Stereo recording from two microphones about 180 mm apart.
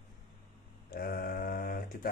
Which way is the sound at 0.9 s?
55° left (ahead or behind).